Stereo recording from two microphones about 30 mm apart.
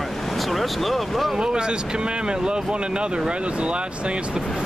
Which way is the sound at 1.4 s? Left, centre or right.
Right.